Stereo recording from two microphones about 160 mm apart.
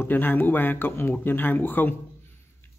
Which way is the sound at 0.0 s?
10° left (ahead or behind).